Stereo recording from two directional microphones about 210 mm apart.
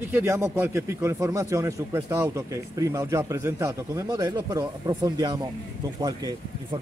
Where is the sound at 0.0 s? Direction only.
10° right (ahead or behind).